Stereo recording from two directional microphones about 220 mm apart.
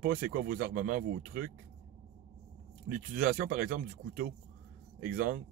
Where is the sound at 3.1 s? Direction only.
40° right (ahead or behind).